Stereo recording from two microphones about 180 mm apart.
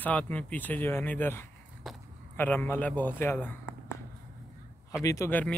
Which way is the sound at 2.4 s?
10° left (ahead or behind).